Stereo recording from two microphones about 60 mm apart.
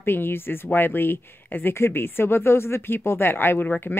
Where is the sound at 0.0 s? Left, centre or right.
Left.